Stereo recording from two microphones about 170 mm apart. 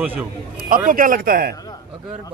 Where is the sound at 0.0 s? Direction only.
10° right (ahead or behind).